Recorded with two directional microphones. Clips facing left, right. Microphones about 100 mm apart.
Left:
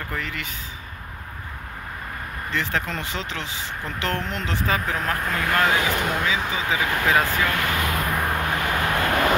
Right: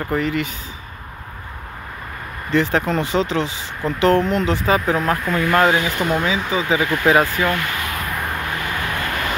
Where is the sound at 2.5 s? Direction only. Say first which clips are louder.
Right 9 dB; 25° right (ahead or behind).